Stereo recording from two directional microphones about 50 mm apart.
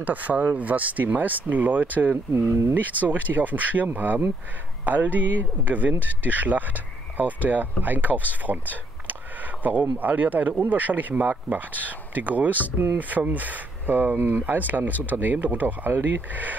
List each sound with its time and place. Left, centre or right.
0.0 s speech: right
2.3 s speech: right
2.7 s speech: right